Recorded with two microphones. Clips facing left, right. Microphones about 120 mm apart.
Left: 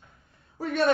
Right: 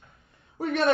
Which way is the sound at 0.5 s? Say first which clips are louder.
Even; 20° right (ahead or behind).